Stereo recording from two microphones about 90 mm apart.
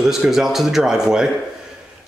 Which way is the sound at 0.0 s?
5° right (ahead or behind).